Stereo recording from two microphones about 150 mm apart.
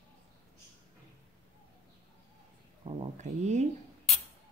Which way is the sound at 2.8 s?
50° right (ahead or behind).